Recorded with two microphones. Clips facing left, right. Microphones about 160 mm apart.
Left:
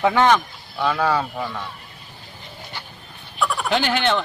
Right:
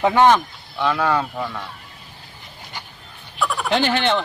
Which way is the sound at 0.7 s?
5° left (ahead or behind).